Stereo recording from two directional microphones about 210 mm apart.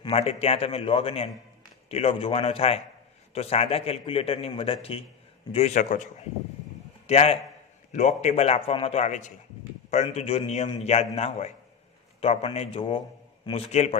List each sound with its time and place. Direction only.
0.0 s a man's voice: 30° left (ahead or behind)
7.1 s a man's voice: 30° left (ahead or behind)